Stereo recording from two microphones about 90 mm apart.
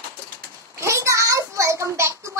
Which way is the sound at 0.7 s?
35° right (ahead or behind).